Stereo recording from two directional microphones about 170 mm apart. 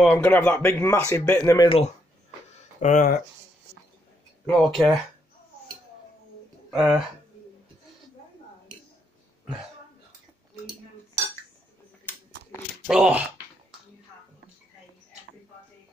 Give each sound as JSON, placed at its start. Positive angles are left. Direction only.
{"t": 0.0, "sound": "speech", "side_deg": 5}
{"t": 2.8, "sound": "speech", "side_deg": 50}
{"t": 4.5, "sound": "speech", "side_deg": 5}
{"t": 6.7, "sound": "speech", "side_deg": 0}
{"t": 12.1, "sound": "a sound", "side_deg": 10}
{"t": 12.8, "sound": "speech", "side_deg": -5}